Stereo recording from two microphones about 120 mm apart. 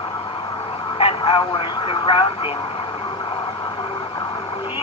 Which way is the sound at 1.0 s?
50° left (ahead or behind).